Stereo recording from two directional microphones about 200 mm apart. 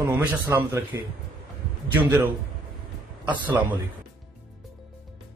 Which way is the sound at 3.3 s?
10° right (ahead or behind).